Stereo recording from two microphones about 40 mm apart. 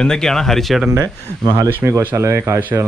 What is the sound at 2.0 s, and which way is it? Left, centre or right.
Speech, right.